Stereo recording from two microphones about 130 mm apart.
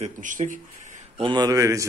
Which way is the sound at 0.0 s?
75° right (ahead or behind).